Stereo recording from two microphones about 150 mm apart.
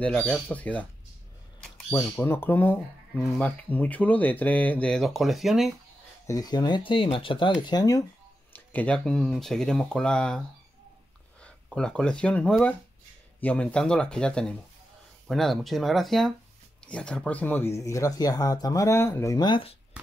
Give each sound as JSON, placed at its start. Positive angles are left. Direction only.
{"t": 0.0, "sound": "speech", "side_deg": 10}
{"t": 2.0, "sound": "speech", "side_deg": 15}
{"t": 6.2, "sound": "speech", "side_deg": 25}
{"t": 8.5, "sound": "speech", "side_deg": 10}
{"t": 11.4, "sound": "speech", "side_deg": 5}